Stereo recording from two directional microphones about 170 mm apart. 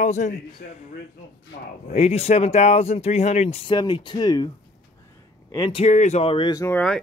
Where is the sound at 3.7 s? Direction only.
25° left (ahead or behind).